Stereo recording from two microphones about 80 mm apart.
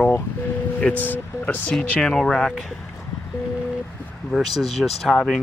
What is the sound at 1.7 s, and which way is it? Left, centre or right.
Speech, centre.